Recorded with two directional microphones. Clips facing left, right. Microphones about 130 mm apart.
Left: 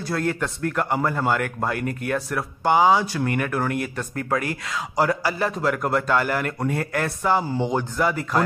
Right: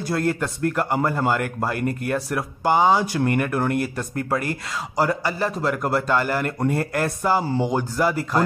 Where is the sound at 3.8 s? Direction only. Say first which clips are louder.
Right 2 dB; 35° right (ahead or behind).